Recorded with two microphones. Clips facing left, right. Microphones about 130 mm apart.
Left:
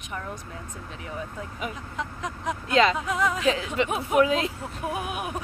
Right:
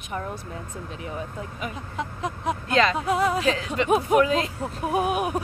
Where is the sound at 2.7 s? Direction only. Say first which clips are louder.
Left 1 dB; 5° left (ahead or behind).